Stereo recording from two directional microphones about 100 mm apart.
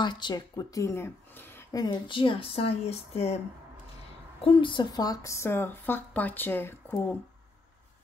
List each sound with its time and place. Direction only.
0.0 s speech: 50° left (ahead or behind); by 1.7 s 20° left (ahead or behind)
1.7 s speech: 40° left (ahead or behind)
2.0 s speech: 60° left (ahead or behind); by 3.3 s 90° left
4.4 s speech: 60° left (ahead or behind); by 6.8 s 20° left (ahead or behind)